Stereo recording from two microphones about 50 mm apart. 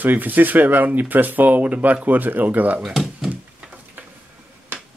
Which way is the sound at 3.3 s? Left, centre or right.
Right.